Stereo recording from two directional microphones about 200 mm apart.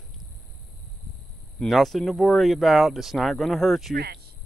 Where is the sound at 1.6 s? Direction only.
Centre (ahead or behind).